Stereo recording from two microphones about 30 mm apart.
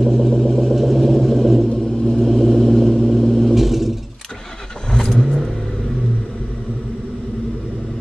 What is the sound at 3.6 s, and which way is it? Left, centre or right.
Vehicle, centre.